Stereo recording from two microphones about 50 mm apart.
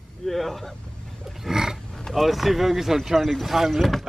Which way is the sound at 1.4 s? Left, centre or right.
Centre.